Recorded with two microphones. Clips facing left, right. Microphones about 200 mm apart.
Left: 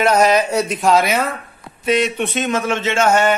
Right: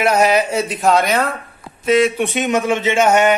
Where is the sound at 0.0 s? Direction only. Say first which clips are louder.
Even; 10° right (ahead or behind).